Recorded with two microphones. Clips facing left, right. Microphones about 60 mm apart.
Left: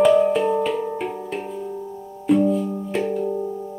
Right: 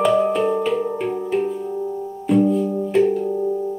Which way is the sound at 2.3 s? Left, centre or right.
Centre.